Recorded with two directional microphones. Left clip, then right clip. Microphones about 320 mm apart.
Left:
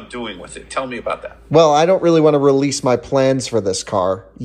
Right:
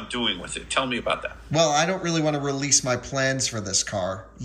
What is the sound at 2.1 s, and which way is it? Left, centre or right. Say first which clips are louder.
Speech: left 13 dB; centre.